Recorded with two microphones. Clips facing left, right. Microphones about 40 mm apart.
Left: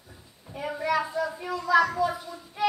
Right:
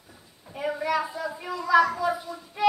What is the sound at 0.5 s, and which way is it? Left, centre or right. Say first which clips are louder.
A child's voice: right 1 dB; centre.